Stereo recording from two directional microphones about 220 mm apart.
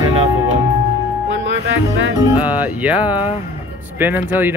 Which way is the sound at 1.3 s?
55° right (ahead or behind).